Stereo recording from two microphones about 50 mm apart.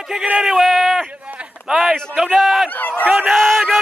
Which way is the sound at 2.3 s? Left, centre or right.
Centre.